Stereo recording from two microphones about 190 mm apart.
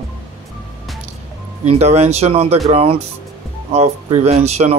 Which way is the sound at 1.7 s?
35° right (ahead or behind).